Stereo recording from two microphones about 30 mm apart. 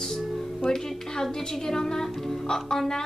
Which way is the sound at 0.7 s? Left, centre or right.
Centre.